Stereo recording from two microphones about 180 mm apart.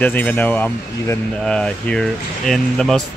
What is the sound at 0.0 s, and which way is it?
Speech, 10° left (ahead or behind).